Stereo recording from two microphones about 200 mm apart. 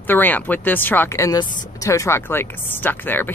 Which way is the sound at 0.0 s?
10° left (ahead or behind).